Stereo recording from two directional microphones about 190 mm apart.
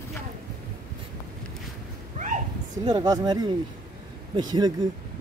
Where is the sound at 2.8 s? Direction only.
20° right (ahead or behind).